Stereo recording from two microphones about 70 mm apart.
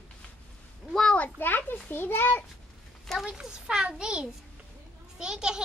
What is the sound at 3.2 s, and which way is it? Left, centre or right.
A child's voice, centre.